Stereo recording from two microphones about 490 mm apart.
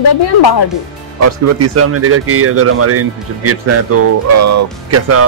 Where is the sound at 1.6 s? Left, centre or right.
Right.